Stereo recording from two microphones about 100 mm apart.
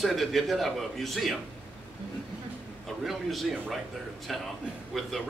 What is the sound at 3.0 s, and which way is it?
Speech, centre (ahead or behind).